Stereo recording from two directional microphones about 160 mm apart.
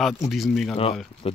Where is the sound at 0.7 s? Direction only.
35° left (ahead or behind).